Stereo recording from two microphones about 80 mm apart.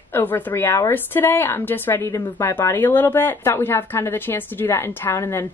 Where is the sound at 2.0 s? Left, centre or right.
Left.